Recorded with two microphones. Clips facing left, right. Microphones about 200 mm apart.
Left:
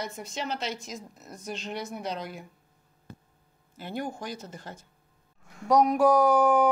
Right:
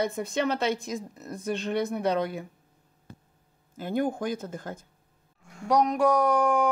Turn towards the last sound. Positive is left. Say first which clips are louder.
# left 2 dB
turn(degrees=5)  # may be behind; listen again after turning